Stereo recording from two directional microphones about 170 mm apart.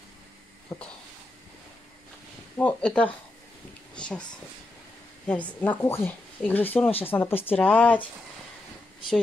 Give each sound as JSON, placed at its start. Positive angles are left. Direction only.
{"t": 0.7, "sound": "speech", "side_deg": 20}
{"t": 2.5, "sound": "speech", "side_deg": 10}
{"t": 3.9, "sound": "a sound", "side_deg": 5}
{"t": 5.2, "sound": "speech", "side_deg": 10}